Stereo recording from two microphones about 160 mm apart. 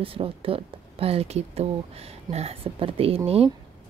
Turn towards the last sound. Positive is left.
turn(degrees=-40)  # may be behind; listen again after turning